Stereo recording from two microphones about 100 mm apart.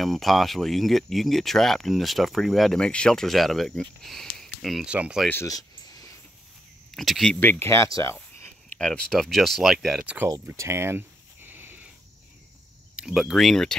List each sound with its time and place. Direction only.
0.0 s speech: centre (ahead or behind)
4.9 s speech: 15° right (ahead or behind)
5.5 s a sound: 40° left (ahead or behind)
7.0 s speech: 5° left (ahead or behind)
7.3 s speech: 20° left (ahead or behind)
8.7 s speech: 10° left (ahead or behind)
10.0 s speech: 20° right (ahead or behind)
10.4 s a sound: 30° right (ahead or behind)
12.9 s speech: 5° right (ahead or behind)